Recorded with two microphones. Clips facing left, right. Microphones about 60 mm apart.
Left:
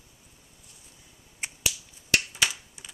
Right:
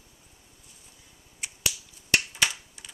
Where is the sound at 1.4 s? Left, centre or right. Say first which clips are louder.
Left 3 dB; left.